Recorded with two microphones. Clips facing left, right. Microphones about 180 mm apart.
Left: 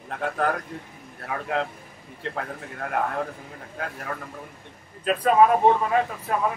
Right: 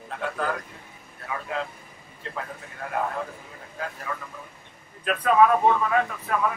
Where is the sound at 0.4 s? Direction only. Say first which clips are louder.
Left 4 dB; 65° left (ahead or behind).